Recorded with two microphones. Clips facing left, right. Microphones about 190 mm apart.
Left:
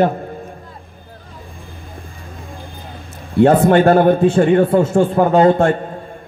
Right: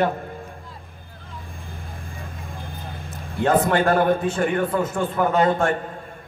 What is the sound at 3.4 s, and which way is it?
A man's voice, 30° left (ahead or behind).